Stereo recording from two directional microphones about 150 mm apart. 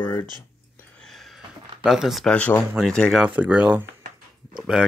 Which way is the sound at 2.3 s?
10° left (ahead or behind).